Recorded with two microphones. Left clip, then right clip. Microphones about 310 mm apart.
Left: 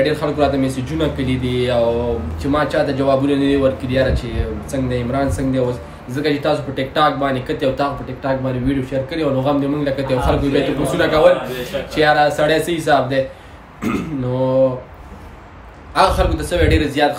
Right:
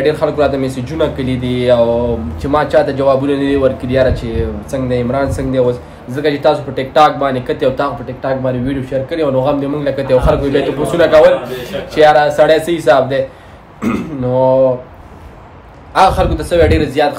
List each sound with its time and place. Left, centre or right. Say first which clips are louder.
0.0 s a man's voice: right 4 dB; centre
15.9 s a man's voice: right 5 dB; centre